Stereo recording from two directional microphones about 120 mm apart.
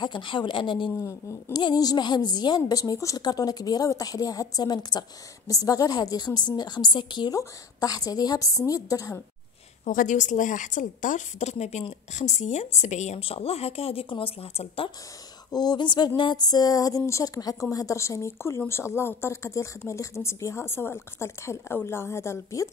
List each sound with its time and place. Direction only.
0.0 s speech: 40° left (ahead or behind)
0.9 s a woman's voice: 25° left (ahead or behind)
9.8 s a woman's voice: 90° left; by 14.9 s 55° left (ahead or behind)
15.5 s a woman's voice: 35° left (ahead or behind)